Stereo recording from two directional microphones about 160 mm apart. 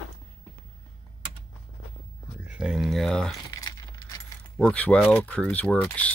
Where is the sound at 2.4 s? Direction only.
5° right (ahead or behind).